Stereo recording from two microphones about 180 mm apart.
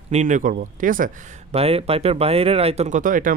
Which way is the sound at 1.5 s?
35° right (ahead or behind).